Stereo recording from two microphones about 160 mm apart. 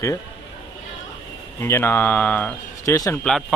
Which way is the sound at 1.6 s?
15° left (ahead or behind).